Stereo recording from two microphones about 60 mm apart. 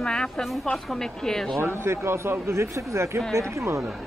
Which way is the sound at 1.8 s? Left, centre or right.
Right.